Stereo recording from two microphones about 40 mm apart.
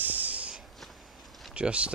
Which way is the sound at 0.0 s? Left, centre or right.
Right.